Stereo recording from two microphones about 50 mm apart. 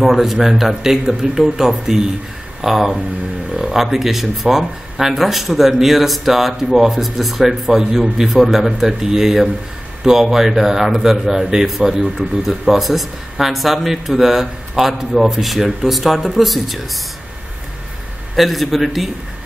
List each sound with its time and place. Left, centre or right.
0.0 s a man's voice: centre
18.3 s a man's voice: centre